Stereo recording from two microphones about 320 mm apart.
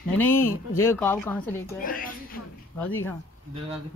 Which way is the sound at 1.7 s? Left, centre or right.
Left.